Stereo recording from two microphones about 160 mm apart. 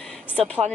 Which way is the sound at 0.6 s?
15° right (ahead or behind).